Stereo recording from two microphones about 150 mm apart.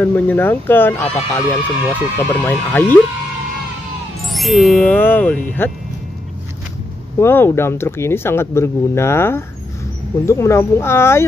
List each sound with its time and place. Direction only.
0.0 s speech: 10° left (ahead or behind)
4.3 s speech: centre (ahead or behind)
7.2 s speech: 15° left (ahead or behind)